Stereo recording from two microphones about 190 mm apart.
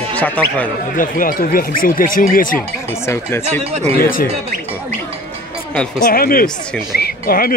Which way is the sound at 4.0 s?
50° left (ahead or behind).